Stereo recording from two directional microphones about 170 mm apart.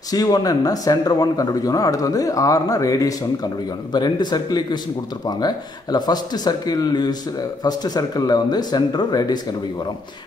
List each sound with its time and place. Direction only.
0.1 s speech: 20° left (ahead or behind)